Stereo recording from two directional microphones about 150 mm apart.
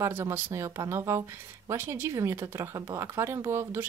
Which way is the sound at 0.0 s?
15° right (ahead or behind).